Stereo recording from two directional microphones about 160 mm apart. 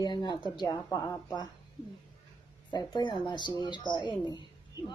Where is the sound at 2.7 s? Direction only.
30° left (ahead or behind).